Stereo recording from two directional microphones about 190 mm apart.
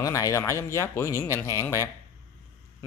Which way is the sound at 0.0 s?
15° left (ahead or behind).